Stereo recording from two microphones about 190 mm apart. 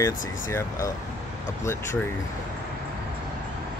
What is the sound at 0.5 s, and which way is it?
Speech, 15° left (ahead or behind).